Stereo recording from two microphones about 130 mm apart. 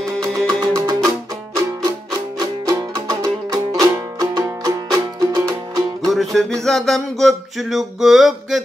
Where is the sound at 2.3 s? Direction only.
30° right (ahead or behind).